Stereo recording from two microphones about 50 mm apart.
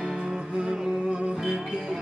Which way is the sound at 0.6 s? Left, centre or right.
Centre.